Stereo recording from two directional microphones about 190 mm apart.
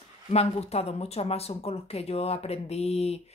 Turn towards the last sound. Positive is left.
turn(degrees=35)  # may be behind; listen again after turning